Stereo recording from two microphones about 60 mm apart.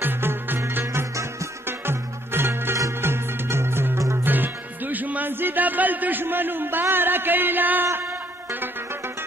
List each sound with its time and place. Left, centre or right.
0.0 s music: right
1.7 s music: right
4.2 s music: right